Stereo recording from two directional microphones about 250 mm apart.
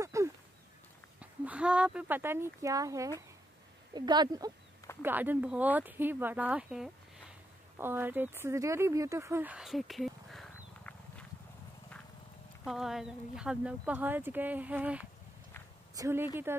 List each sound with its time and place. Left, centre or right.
0.0 s a sound: centre
1.2 s speech: centre
12.6 s speech: centre